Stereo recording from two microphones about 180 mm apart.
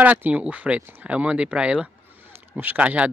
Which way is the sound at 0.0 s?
10° right (ahead or behind).